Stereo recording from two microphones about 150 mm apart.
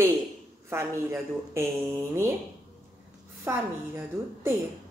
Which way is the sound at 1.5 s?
20° right (ahead or behind).